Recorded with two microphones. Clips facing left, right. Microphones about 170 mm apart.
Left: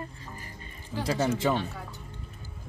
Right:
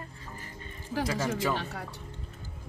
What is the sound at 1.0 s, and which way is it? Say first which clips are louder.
Speech: left 3 dB; 30° left (ahead or behind).